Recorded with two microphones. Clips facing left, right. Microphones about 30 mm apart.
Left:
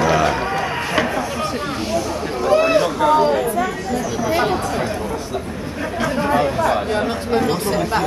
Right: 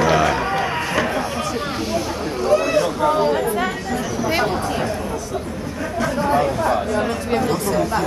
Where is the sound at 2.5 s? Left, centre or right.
Left.